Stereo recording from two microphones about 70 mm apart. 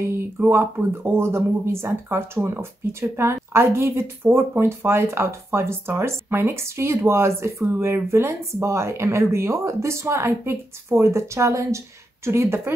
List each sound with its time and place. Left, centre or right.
0.0 s a sound: right
0.5 s speech: right
12.3 s speech: right